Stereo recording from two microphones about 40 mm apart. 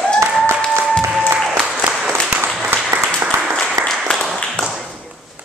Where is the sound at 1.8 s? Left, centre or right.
Right.